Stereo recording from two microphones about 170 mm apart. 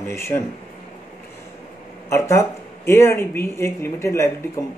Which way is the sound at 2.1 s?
15° left (ahead or behind).